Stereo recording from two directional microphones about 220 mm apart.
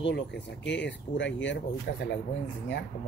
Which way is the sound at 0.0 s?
50° left (ahead or behind).